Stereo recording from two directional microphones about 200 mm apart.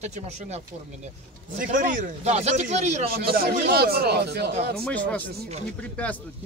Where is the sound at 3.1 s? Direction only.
50° right (ahead or behind).